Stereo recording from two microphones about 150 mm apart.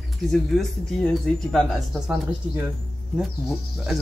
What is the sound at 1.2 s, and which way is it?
Speech, centre (ahead or behind).